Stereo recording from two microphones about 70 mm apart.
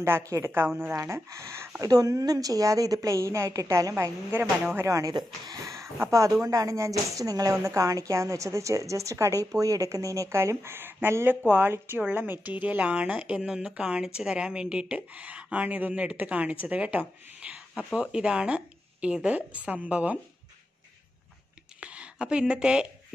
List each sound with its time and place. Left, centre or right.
0.4 s speech: right
0.9 s a woman's voice: right
1.8 s a woman's voice: right
4.3 s speech: right
4.8 s a woman's voice: right; by 17.0 s centre
17.4 s a sound: centre
17.9 s speech: centre
21.7 s a sound: centre